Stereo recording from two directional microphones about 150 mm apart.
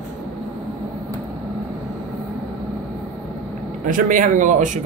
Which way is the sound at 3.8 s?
60° right (ahead or behind).